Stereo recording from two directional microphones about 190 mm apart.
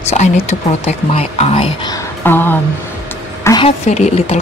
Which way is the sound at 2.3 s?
10° left (ahead or behind).